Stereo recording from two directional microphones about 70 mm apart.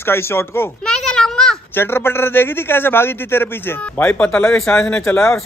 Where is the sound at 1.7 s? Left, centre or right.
Left.